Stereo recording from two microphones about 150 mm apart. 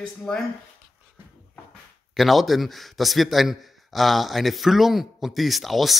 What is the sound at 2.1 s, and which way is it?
A man's voice, centre (ahead or behind).